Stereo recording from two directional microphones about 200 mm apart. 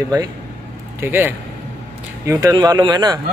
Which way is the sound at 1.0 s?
10° right (ahead or behind).